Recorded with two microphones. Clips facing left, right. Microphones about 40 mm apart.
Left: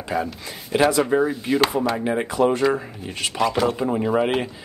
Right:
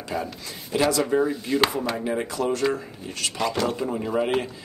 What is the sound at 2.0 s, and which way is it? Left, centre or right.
Speech, left.